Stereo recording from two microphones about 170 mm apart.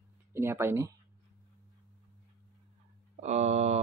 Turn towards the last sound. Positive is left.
turn(degrees=-40)  # may be behind; listen again after turning